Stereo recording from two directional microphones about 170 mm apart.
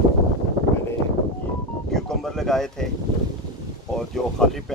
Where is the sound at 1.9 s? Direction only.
Centre (ahead or behind).